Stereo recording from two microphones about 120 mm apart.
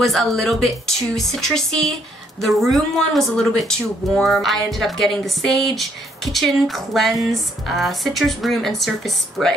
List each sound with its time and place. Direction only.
0.0 s speech: centre (ahead or behind)